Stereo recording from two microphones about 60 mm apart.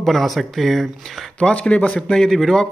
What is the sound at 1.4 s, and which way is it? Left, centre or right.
Speech, left.